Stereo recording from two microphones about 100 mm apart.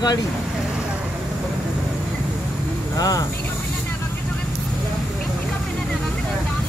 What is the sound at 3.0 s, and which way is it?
Speech, 40° left (ahead or behind).